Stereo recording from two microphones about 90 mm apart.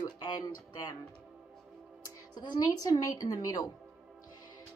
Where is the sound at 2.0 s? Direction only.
50° left (ahead or behind).